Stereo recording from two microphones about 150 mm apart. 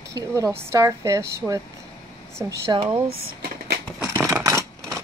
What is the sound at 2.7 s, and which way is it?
Speech, 40° right (ahead or behind).